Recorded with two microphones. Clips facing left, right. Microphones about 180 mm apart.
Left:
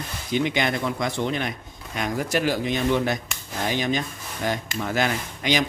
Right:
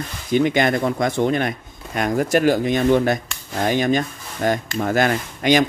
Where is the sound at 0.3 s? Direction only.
50° right (ahead or behind).